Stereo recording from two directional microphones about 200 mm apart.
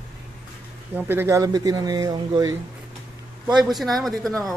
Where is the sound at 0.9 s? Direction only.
10° right (ahead or behind).